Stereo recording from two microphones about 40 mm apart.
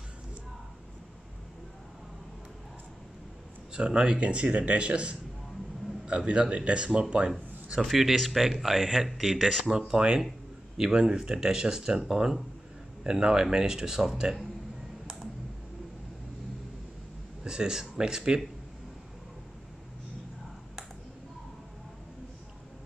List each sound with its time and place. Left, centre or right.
3.7 s a man's voice: right
7.8 s speech: centre
9.7 s speech: centre
13.0 s speech: centre
17.4 s speech: centre